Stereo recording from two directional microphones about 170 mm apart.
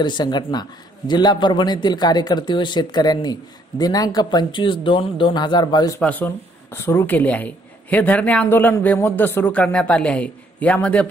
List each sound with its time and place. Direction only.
0.0 s a man's voice: 25° left (ahead or behind)
5.9 s speech: 10° left (ahead or behind)